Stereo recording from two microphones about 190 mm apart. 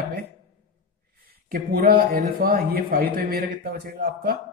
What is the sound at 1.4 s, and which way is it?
A man's voice, 50° right (ahead or behind).